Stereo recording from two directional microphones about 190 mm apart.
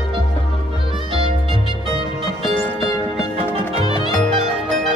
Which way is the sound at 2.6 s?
20° left (ahead or behind).